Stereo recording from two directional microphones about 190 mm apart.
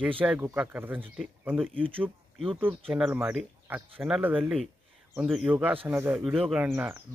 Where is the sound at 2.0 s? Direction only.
5° right (ahead or behind).